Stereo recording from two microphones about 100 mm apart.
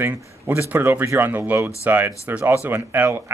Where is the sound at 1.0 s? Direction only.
30° right (ahead or behind).